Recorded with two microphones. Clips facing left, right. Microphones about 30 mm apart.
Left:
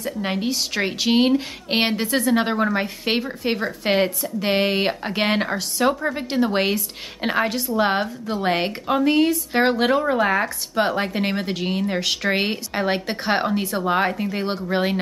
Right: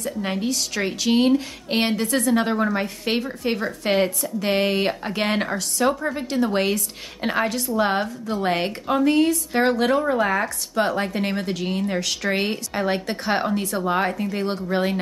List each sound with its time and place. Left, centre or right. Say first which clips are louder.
0.0 s a woman's voice: left 1 dB; centre